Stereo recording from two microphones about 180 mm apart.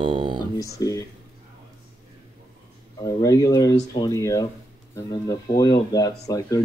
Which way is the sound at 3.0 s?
20° left (ahead or behind).